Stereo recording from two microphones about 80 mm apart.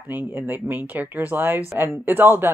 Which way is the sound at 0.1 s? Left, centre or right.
Right.